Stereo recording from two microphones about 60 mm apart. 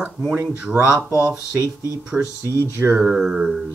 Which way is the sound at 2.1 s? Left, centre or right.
Right.